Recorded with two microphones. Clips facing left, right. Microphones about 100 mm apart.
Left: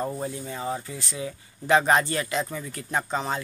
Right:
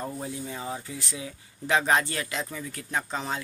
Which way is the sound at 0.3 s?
5° right (ahead or behind).